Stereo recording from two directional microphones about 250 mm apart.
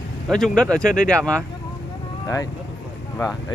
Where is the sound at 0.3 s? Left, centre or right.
Centre.